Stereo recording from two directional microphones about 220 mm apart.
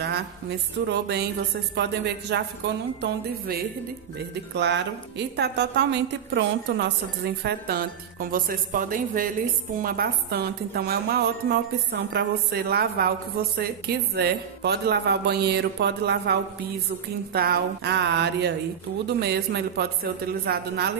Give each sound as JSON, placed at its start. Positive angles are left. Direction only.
{"t": 0.8, "sound": "a woman's voice", "side_deg": -50}